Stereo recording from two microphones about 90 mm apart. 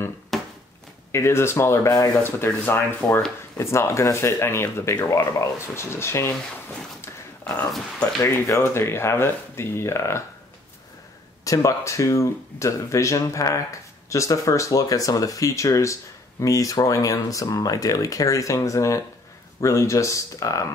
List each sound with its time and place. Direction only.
0.3 s a sound: centre (ahead or behind)
1.1 s speech: 30° left (ahead or behind)
2.2 s speech: 25° left (ahead or behind)
7.0 s a sound: 30° left (ahead or behind)
8.5 s speech: 30° left (ahead or behind)
11.4 s speech: 35° left (ahead or behind)